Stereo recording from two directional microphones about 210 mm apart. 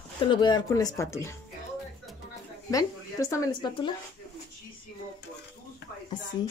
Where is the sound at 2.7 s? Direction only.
15° left (ahead or behind).